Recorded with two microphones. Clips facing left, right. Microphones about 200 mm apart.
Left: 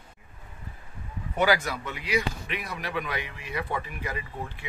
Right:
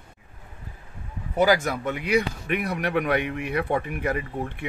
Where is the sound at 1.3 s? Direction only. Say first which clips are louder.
Right 4 dB; 45° right (ahead or behind).